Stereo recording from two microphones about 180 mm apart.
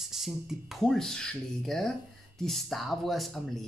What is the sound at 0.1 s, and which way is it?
Speech, centre (ahead or behind).